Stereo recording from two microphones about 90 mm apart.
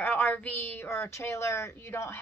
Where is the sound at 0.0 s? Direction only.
20° left (ahead or behind).